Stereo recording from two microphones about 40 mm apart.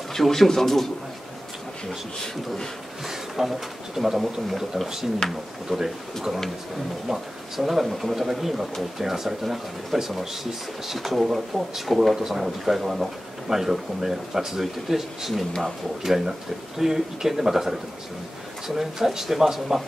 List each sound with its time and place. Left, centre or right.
0.1 s a man's voice: centre
3.1 s speech: centre
5.2 s a man's voice: centre
7.1 s speech: centre
18.8 s speech: centre